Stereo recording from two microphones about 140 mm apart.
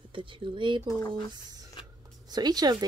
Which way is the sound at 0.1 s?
35° right (ahead or behind).